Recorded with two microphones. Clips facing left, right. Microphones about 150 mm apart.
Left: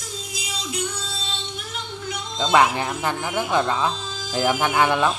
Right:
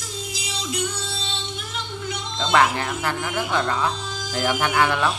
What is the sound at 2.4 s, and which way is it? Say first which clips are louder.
Speech: left 1 dB; 15° left (ahead or behind).